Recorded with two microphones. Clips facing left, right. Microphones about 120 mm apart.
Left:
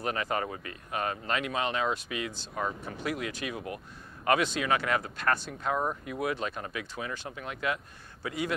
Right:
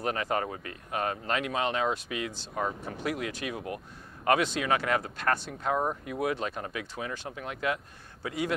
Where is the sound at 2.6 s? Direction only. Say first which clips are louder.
Right 2 dB; 30° right (ahead or behind).